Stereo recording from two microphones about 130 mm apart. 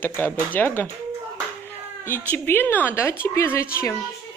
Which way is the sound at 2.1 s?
15° left (ahead or behind).